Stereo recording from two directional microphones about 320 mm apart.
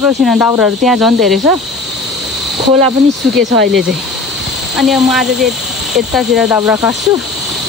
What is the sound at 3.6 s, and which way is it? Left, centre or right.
Speech, centre.